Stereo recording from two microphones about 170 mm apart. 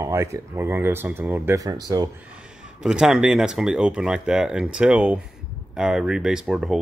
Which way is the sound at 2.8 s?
5° right (ahead or behind).